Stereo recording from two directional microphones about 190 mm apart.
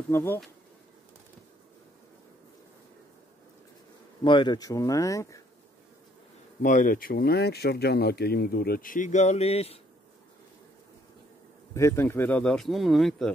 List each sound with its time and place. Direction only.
0.1 s speech: 15° left (ahead or behind)
4.2 s speech: 25° left (ahead or behind)
6.6 s speech: 45° left (ahead or behind)
11.7 s speech: 15° left (ahead or behind)